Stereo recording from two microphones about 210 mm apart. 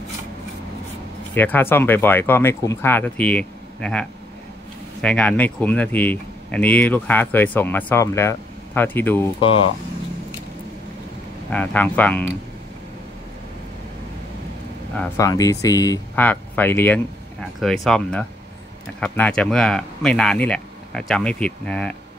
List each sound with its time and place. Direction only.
1.3 s speech: 10° left (ahead or behind)
5.0 s speech: 5° left (ahead or behind)
9.4 s speech: 25° left (ahead or behind)
11.5 s speech: 5° left (ahead or behind)
15.0 s speech: 15° left (ahead or behind)